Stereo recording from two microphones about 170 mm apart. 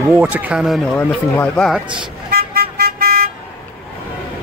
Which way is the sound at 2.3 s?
60° right (ahead or behind).